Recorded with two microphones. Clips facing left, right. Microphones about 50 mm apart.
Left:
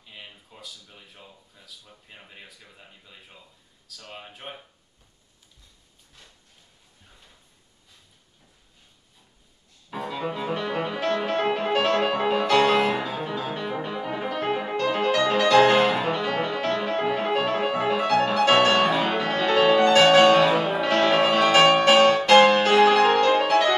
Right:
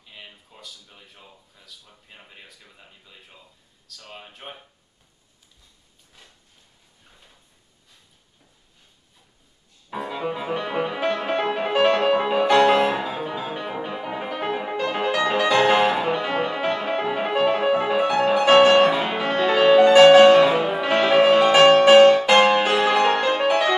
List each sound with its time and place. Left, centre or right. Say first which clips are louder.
0.0 s speech: even; centre
9.8 s music: right 2 dB; centre